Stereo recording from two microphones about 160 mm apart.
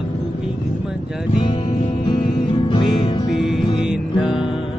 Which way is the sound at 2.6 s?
30° left (ahead or behind).